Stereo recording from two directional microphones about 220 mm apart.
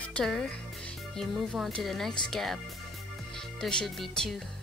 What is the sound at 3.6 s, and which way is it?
Speech, centre (ahead or behind).